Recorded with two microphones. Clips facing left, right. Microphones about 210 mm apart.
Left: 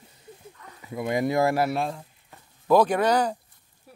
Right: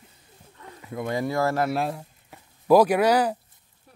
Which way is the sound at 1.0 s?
15° left (ahead or behind).